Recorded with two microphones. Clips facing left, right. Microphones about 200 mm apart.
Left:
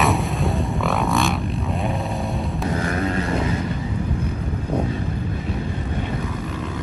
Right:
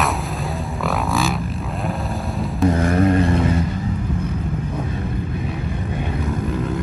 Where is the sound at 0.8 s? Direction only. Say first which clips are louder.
Right 1 dB; centre (ahead or behind).